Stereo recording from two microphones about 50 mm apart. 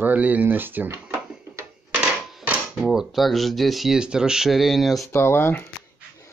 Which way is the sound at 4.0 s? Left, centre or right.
Centre.